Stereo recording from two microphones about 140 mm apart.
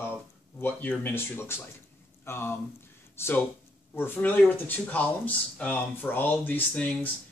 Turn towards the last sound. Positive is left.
turn(degrees=5)  # may be behind; listen again after turning